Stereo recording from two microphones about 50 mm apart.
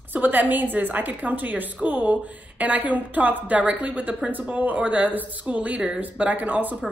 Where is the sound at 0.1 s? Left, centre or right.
Right.